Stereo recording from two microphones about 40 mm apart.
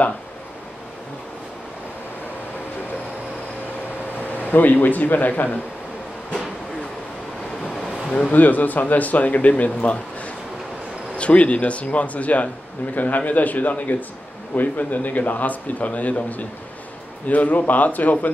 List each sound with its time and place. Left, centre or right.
4.4 s a man's voice: left
8.2 s a man's voice: left